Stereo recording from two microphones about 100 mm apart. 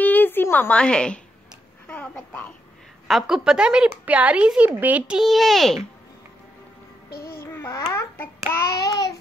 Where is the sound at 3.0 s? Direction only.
5° right (ahead or behind).